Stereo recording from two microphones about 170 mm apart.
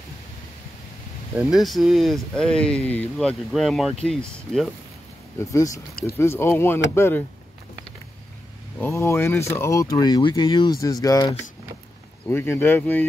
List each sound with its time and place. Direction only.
1.4 s speech: centre (ahead or behind)
6.1 s speech: 15° left (ahead or behind)
8.7 s speech: 15° left (ahead or behind)